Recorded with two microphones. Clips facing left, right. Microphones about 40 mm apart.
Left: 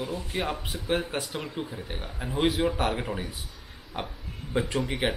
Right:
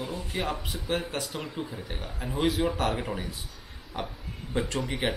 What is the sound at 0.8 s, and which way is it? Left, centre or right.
Speech, centre.